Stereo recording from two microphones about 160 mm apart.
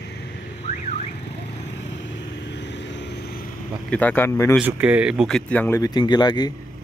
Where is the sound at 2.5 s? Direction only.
90° left.